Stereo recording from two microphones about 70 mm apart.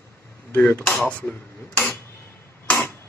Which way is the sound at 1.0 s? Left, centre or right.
Left.